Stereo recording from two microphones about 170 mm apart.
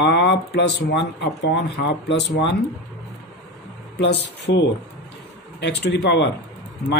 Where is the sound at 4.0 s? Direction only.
90° left.